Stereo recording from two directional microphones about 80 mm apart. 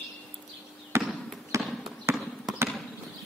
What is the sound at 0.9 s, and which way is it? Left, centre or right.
Basketball bounce, right.